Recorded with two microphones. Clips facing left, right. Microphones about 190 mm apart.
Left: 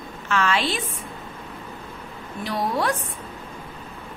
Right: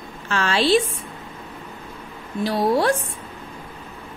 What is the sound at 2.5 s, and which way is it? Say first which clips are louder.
Speech: right 5 dB; 30° right (ahead or behind).